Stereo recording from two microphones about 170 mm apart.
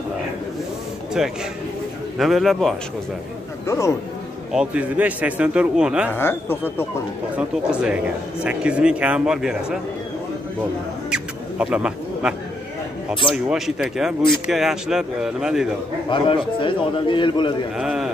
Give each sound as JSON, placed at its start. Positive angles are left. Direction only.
{"t": 2.1, "sound": "speech", "side_deg": 0}
{"t": 3.6, "sound": "speech", "side_deg": 15}
{"t": 4.5, "sound": "a man's voice", "side_deg": -5}
{"t": 6.1, "sound": "speech", "side_deg": 10}
{"t": 7.3, "sound": "speech", "side_deg": -5}
{"t": 11.1, "sound": "mouse", "side_deg": -5}
{"t": 13.3, "sound": "speech", "side_deg": 0}
{"t": 16.1, "sound": "a man's voice", "side_deg": 30}
{"t": 17.7, "sound": "speech", "side_deg": -5}